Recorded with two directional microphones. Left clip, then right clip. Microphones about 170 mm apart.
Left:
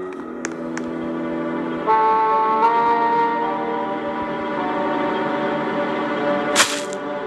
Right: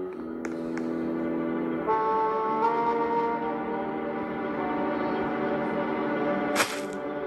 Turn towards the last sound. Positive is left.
turn(degrees=40)  # may be behind; listen again after turning